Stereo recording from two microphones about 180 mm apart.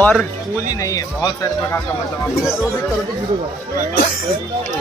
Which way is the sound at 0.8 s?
20° left (ahead or behind).